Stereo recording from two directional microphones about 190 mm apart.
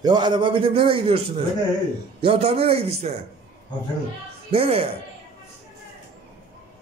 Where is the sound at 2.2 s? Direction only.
30° right (ahead or behind).